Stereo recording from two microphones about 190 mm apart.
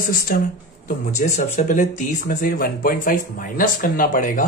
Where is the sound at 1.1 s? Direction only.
40° left (ahead or behind).